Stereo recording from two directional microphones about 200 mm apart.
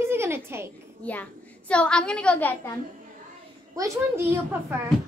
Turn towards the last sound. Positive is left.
turn(degrees=-10)  # may be behind; listen again after turning